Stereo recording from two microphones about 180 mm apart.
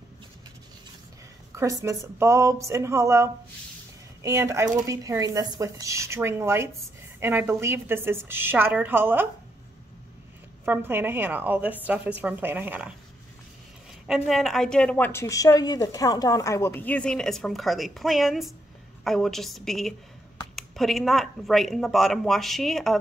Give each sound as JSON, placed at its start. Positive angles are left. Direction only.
{"t": 1.5, "sound": "speech", "side_deg": -15}
{"t": 10.6, "sound": "speech", "side_deg": -10}
{"t": 14.0, "sound": "speech", "side_deg": 0}